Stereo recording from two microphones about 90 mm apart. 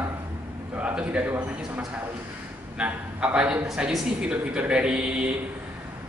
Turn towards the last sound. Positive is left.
turn(degrees=-10)  # may be behind; listen again after turning